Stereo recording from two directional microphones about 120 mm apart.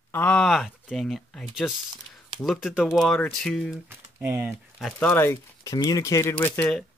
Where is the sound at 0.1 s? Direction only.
10° left (ahead or behind).